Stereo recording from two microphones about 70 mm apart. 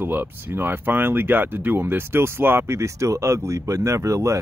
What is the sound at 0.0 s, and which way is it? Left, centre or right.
Speech, right.